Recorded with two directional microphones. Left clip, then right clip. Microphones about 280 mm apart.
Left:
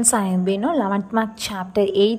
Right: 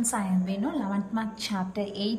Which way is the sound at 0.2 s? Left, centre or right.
Centre.